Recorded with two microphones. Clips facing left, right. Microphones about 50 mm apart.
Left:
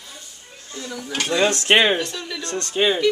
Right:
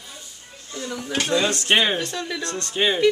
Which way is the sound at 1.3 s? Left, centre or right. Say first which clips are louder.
Left 3 dB; left.